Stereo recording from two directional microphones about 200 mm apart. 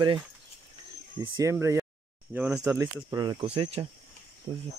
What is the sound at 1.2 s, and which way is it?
Speech, 15° right (ahead or behind).